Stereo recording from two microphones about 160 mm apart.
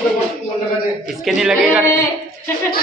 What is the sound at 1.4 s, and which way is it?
Speech, 5° right (ahead or behind).